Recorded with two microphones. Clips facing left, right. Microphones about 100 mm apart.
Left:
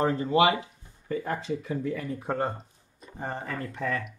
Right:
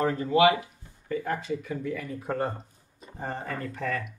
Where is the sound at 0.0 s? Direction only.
30° left (ahead or behind).